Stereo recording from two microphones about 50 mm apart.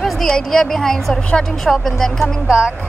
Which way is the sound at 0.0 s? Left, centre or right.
Centre.